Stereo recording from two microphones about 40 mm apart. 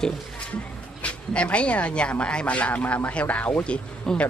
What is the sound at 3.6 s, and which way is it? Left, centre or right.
Speech, left.